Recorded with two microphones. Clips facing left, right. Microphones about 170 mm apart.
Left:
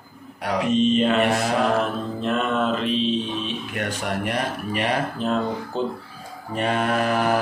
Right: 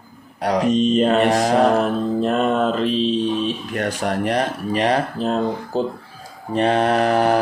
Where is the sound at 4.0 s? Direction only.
35° right (ahead or behind).